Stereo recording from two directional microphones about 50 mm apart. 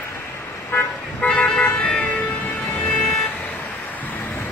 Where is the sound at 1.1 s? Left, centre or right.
Left.